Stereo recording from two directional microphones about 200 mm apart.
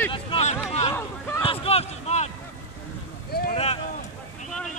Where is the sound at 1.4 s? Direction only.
30° left (ahead or behind).